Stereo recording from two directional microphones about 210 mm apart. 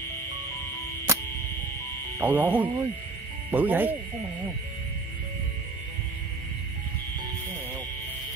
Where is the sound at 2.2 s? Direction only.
10° right (ahead or behind).